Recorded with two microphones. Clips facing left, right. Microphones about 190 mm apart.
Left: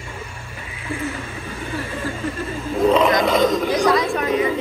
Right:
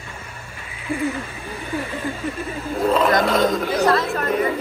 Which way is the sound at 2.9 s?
Centre (ahead or behind).